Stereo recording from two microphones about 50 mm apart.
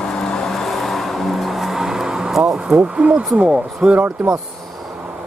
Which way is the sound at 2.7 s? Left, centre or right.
Right.